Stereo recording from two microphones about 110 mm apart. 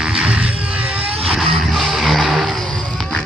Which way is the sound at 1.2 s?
Centre (ahead or behind).